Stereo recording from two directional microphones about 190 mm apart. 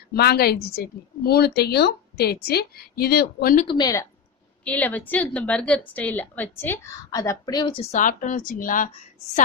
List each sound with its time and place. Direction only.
0.1 s a woman's voice: 55° left (ahead or behind)
3.6 s a woman's voice: 20° left (ahead or behind)
7.9 s a woman's voice: 45° left (ahead or behind)